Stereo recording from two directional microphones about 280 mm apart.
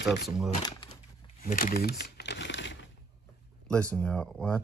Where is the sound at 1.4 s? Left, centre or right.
Left.